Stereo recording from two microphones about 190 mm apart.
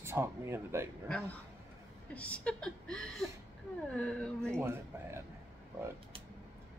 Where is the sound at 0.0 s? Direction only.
15° right (ahead or behind).